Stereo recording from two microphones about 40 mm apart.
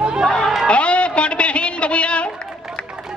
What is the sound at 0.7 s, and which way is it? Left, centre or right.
Music, left.